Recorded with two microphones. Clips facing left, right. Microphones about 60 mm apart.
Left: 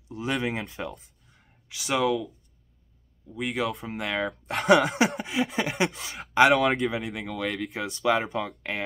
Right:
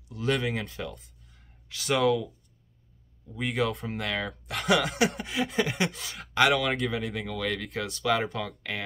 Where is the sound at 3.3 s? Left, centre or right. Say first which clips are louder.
Even; centre.